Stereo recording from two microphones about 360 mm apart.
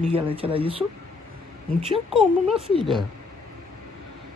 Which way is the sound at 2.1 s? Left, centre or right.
Centre.